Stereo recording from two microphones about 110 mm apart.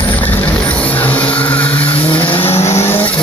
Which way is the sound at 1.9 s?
55° left (ahead or behind).